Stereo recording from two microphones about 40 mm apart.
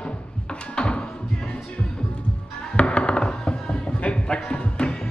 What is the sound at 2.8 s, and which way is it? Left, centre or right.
Music, left.